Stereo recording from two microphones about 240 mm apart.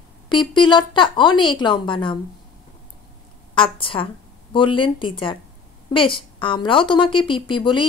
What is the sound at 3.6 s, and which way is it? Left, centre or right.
Speech, left.